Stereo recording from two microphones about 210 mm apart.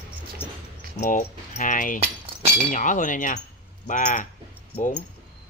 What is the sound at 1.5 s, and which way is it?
Speech, 40° left (ahead or behind).